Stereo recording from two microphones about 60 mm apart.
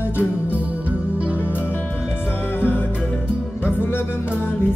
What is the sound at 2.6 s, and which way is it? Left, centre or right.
Music, left.